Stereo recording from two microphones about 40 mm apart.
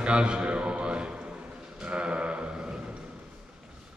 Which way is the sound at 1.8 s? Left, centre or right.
Right.